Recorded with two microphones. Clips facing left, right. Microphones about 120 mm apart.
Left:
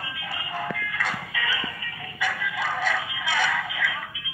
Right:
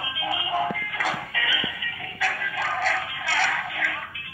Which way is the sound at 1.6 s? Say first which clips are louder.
Right 1 dB; 40° left (ahead or behind).